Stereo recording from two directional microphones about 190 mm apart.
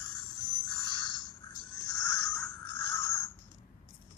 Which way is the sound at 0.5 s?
25° left (ahead or behind).